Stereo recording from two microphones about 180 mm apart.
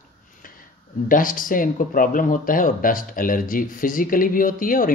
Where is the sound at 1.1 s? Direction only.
50° left (ahead or behind).